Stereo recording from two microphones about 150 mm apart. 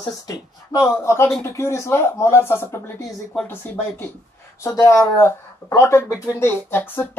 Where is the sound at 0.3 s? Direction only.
20° left (ahead or behind).